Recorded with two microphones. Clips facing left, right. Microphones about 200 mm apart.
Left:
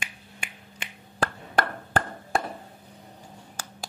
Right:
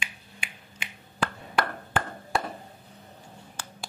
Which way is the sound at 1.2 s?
40° left (ahead or behind).